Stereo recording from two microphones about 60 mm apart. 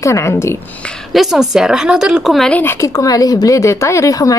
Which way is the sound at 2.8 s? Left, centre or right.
Left.